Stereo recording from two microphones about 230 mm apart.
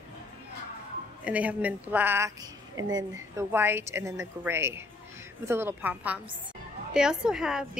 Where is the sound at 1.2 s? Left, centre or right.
Centre.